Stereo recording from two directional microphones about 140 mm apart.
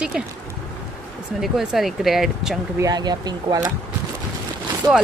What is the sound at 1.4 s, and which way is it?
Speech, centre (ahead or behind).